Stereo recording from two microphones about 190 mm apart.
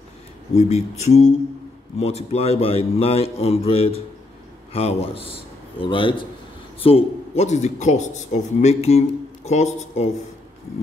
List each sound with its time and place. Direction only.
0.6 s a man's voice: 35° left (ahead or behind)